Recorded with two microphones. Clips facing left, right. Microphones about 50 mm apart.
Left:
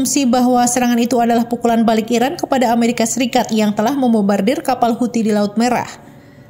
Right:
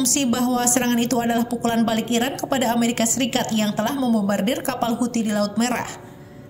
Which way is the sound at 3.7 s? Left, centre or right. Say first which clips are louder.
Left 8 dB; left.